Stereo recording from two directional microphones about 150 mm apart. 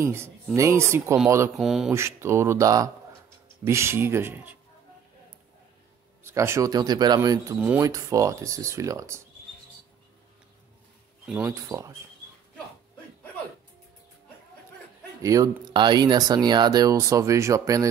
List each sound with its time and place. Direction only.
0.0 s speech: 15° right (ahead or behind)
1.6 s speech: centre (ahead or behind)
1.9 s speech: 20° right (ahead or behind)
6.2 s speech: 15° right (ahead or behind)
11.4 s speech: 20° right (ahead or behind)
15.2 s speech: 25° right (ahead or behind)